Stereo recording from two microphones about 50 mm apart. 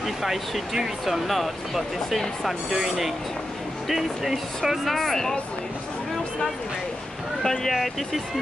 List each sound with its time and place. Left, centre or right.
0.0 s speech: centre
3.9 s speech: centre
7.4 s speech: centre